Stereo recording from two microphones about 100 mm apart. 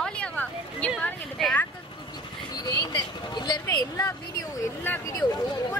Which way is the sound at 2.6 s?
45° left (ahead or behind).